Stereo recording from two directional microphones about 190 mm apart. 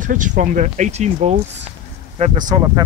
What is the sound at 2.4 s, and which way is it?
Speech, 20° right (ahead or behind).